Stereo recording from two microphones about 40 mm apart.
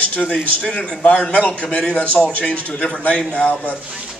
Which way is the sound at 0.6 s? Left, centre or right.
Left.